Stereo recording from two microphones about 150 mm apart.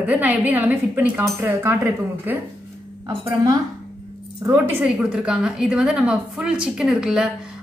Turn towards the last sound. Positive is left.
turn(degrees=-5)  # may be behind; listen again after turning